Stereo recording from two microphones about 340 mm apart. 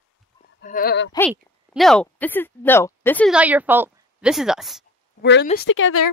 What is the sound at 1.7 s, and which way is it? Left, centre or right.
A woman's voice, centre.